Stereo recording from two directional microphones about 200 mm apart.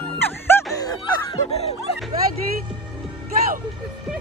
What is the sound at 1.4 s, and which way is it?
Music, 30° left (ahead or behind).